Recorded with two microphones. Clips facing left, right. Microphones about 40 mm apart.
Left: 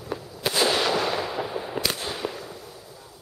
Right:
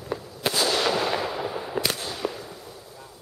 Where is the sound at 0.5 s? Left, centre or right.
Centre.